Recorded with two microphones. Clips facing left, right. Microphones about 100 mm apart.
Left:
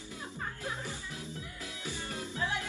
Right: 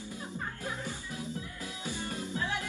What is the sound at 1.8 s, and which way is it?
Music, 20° right (ahead or behind).